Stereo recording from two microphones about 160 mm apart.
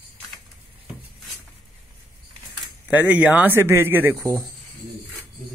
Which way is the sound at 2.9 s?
10° right (ahead or behind).